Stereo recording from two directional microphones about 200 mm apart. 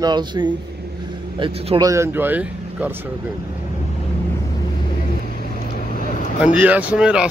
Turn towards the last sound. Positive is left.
turn(degrees=-5)  # may be behind; listen again after turning